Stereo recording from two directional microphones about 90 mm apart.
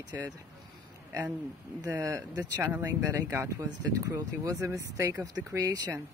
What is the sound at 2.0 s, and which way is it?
Speech, 45° right (ahead or behind).